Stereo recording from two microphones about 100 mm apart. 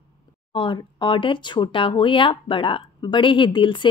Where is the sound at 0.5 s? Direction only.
55° left (ahead or behind).